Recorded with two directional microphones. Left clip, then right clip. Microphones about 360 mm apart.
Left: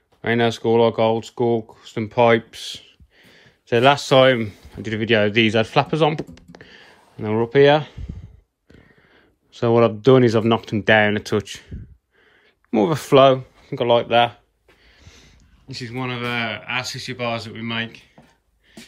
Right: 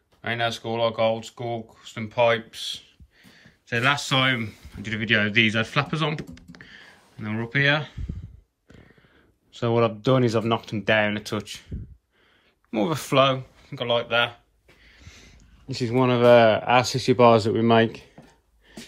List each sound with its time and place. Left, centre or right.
0.2 s speech: centre
9.5 s speech: centre
12.7 s speech: centre
14.9 s a sound: centre
15.7 s speech: centre